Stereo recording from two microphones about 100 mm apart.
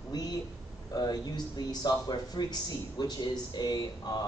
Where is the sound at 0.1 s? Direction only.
40° left (ahead or behind).